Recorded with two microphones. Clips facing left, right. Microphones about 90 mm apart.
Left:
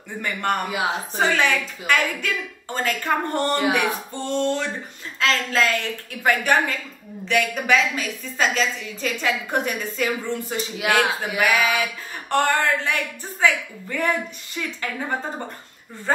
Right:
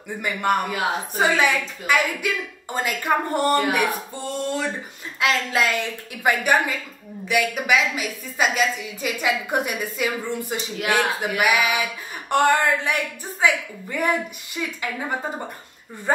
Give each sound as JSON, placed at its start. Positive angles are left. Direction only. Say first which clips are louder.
{"t": 0.2, "sound": "speech", "louder": "right 2 dB", "side_deg": -10}
{"t": 0.7, "sound": "a woman's voice", "louder": "even", "side_deg": 5}
{"t": 1.2, "sound": "speech", "louder": "right 1 dB", "side_deg": -10}